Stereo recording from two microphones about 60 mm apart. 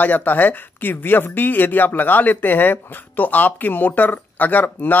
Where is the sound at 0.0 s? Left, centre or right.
Left.